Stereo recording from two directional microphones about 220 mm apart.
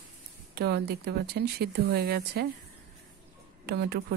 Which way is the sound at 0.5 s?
45° right (ahead or behind).